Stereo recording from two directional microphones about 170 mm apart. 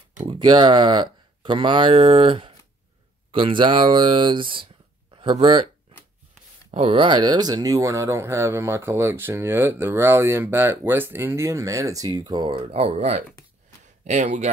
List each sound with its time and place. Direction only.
0.3 s speech: 30° right (ahead or behind)
6.7 s speech: 35° right (ahead or behind)